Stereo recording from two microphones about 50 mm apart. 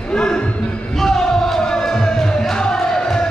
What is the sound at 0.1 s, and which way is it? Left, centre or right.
Music, centre.